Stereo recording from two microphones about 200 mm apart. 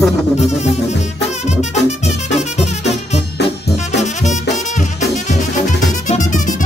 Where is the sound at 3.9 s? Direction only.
35° left (ahead or behind).